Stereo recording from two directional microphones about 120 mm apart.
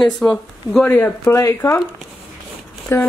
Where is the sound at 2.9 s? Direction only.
20° left (ahead or behind).